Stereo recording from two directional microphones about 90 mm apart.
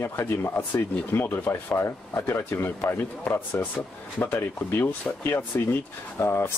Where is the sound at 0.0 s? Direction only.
25° left (ahead or behind).